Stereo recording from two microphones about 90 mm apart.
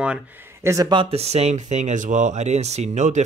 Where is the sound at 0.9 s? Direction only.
75° right (ahead or behind).